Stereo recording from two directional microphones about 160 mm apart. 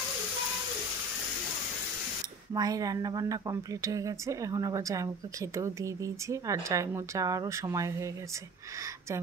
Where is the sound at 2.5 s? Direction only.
25° right (ahead or behind).